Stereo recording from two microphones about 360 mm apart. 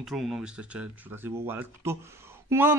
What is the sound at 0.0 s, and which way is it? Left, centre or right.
Speech, centre.